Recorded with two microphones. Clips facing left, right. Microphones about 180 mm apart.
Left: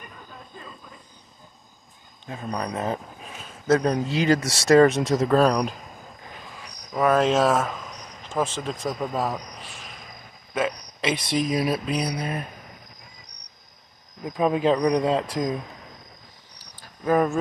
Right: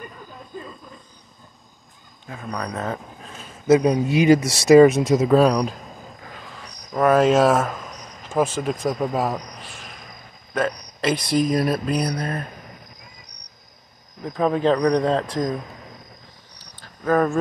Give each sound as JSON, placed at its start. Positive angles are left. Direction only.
{"t": 2.2, "sound": "speech", "side_deg": 25}
{"t": 3.6, "sound": "speech", "side_deg": -10}
{"t": 6.9, "sound": "speech", "side_deg": 0}
{"t": 14.2, "sound": "speech", "side_deg": 10}
{"t": 16.5, "sound": "cricket", "side_deg": 10}